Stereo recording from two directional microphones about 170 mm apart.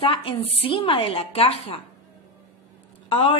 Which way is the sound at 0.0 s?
30° left (ahead or behind).